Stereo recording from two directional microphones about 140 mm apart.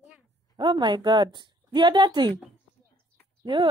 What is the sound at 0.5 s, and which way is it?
Speech, 35° right (ahead or behind).